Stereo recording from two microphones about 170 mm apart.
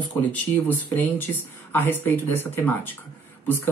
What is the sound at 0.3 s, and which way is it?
Speech, 10° left (ahead or behind).